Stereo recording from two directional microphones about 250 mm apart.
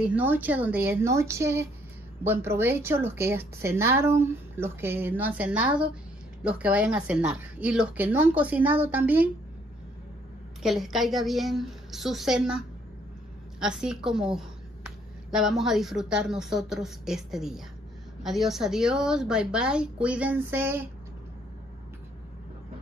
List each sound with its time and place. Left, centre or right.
0.0 s a woman's voice: centre
10.6 s a woman's voice: centre